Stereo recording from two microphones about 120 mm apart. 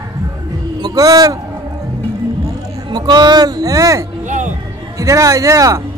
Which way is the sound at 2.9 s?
35° right (ahead or behind).